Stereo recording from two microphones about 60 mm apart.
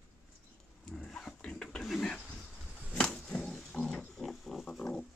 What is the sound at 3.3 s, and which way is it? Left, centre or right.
Pig, centre.